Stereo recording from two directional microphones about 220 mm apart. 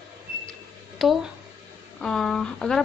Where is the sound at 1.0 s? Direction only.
Centre (ahead or behind).